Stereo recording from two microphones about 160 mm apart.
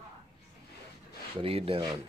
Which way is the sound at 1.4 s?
35° right (ahead or behind).